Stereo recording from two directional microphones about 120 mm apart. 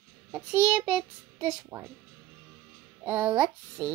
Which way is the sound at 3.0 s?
10° right (ahead or behind).